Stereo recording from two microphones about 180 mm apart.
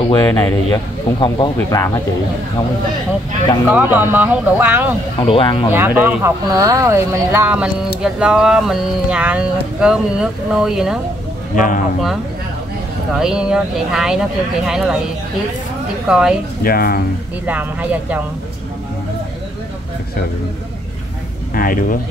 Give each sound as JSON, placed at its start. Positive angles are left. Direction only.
{"t": 0.1, "sound": "speech", "side_deg": 25}
{"t": 3.7, "sound": "speech", "side_deg": -10}
{"t": 5.2, "sound": "speech", "side_deg": 30}
{"t": 5.7, "sound": "speech", "side_deg": -10}
{"t": 11.5, "sound": "speech", "side_deg": 45}
{"t": 13.1, "sound": "speech", "side_deg": -5}
{"t": 16.1, "sound": "speech", "side_deg": -5}
{"t": 16.6, "sound": "speech", "side_deg": 55}
{"t": 17.5, "sound": "speech", "side_deg": -10}
{"t": 21.5, "sound": "speech", "side_deg": 50}